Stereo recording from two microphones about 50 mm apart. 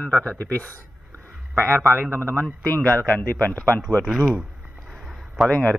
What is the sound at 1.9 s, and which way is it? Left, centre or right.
Speech, right.